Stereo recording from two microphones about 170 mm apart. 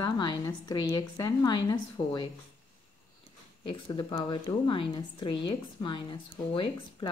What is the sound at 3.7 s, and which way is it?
A woman's voice, 25° left (ahead or behind).